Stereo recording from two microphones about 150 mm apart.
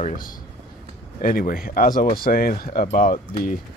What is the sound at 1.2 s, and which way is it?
Speech, 75° left (ahead or behind).